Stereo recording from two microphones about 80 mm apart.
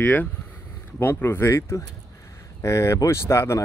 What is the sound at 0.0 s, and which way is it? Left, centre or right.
Speech, left.